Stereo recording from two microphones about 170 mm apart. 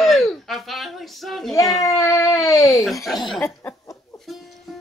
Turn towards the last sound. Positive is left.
turn(degrees=0)  # may be behind; listen again after turning